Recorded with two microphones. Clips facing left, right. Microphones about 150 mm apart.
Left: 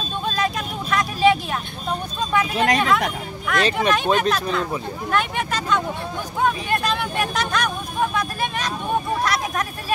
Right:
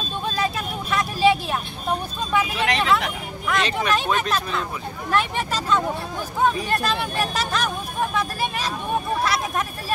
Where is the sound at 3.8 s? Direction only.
30° left (ahead or behind).